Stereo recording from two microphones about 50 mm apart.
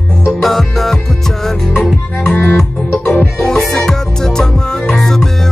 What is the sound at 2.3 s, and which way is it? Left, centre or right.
Music, left.